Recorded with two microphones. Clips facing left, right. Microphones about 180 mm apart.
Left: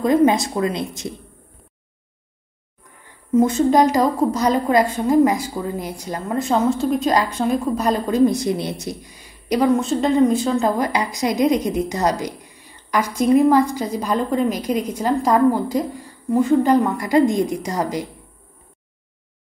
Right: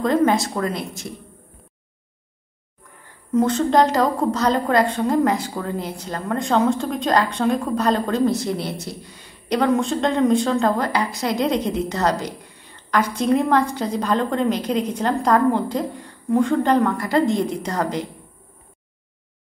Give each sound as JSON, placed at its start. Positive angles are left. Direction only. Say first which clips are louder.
{"t": 0.0, "sound": "a woman's voice", "louder": "left 2 dB", "side_deg": 15}
{"t": 3.3, "sound": "a woman's voice", "louder": "left 2 dB", "side_deg": 10}